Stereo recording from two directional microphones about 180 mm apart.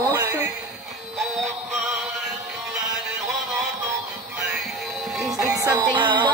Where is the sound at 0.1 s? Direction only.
10° right (ahead or behind).